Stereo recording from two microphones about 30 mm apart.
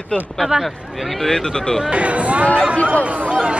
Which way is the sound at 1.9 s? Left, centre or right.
Right.